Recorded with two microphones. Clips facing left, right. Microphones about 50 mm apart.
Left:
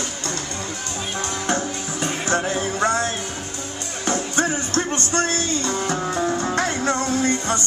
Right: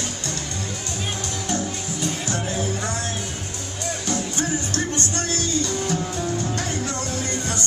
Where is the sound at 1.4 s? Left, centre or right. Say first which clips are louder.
Left 2 dB; left.